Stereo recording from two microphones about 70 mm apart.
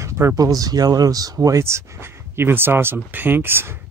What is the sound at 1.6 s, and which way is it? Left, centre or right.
Speech, right.